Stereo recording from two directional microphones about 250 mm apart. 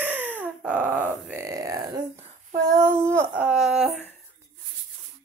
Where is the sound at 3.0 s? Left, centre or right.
Centre.